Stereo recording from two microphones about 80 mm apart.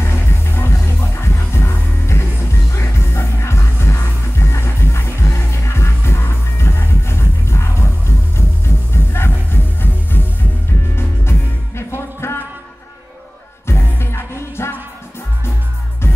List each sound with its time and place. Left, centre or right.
0.0 s music: left
13.7 s music: left